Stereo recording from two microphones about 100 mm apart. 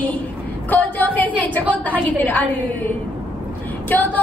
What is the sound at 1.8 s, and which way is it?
Speech, 15° left (ahead or behind).